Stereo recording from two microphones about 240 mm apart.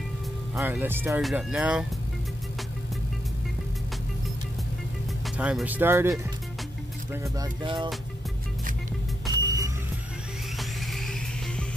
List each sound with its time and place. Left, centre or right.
0.6 s speech: centre
5.4 s speech: centre
7.3 s speech: centre
9.3 s music: centre
10.6 s music: centre